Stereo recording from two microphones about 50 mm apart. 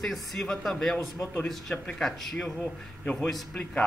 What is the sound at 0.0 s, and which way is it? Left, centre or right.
Speech, centre.